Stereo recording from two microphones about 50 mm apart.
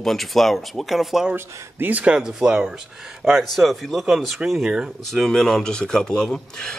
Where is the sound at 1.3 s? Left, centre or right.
Right.